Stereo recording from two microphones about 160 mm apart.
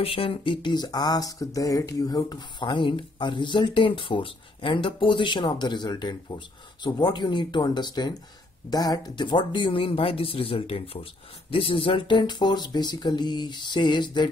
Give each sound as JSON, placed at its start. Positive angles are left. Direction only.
{"t": 0.0, "sound": "speech", "side_deg": 35}